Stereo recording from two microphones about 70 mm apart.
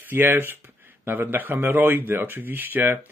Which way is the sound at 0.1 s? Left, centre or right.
Right.